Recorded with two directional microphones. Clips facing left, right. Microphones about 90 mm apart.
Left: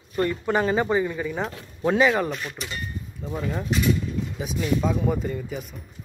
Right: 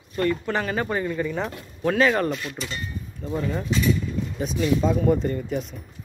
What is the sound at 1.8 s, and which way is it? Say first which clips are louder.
Speech: left 1 dB; 20° left (ahead or behind).